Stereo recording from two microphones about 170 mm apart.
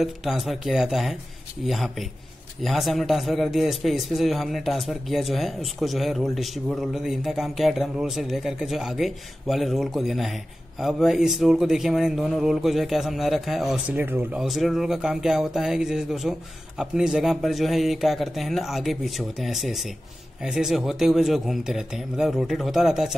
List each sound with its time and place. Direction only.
0.0 s speech: centre (ahead or behind)